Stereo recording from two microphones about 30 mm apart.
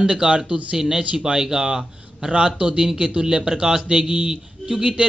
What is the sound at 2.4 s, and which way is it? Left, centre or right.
A man's voice, right.